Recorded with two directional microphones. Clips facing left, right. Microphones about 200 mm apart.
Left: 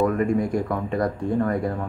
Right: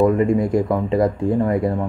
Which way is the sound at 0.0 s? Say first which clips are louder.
Right 5 dB; 20° right (ahead or behind).